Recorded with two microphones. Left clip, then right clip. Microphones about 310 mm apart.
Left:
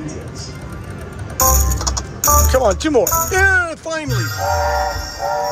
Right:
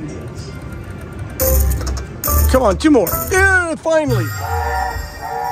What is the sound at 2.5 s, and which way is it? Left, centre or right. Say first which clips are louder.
Music: right 2 dB; centre.